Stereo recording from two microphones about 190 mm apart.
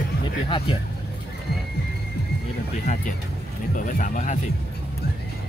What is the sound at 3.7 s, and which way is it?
Speech, 45° left (ahead or behind).